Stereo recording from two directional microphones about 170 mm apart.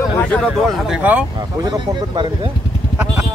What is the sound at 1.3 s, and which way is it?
Speech, 20° right (ahead or behind).